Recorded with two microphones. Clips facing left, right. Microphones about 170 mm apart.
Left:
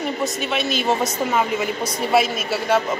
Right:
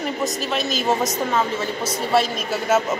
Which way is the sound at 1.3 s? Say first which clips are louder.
Left 1 dB; 10° left (ahead or behind).